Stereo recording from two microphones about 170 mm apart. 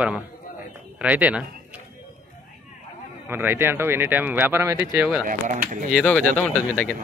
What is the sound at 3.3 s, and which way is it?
Speech, 15° right (ahead or behind).